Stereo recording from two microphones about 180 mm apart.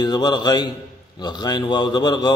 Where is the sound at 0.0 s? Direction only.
25° left (ahead or behind).